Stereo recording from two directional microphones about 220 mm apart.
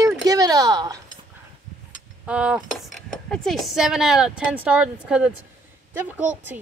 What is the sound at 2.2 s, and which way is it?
Speech, 5° right (ahead or behind).